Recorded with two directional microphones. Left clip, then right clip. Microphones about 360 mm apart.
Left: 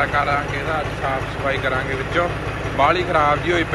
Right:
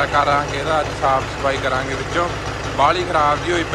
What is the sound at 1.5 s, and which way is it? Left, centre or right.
A man's voice, centre.